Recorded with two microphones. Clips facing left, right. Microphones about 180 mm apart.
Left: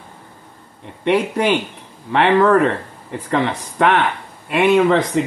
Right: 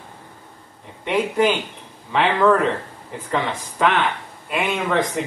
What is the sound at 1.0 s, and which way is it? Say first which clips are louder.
Speech: left 2 dB; 70° left (ahead or behind).